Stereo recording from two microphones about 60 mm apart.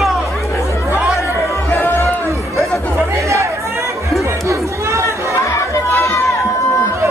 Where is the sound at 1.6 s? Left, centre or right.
Left.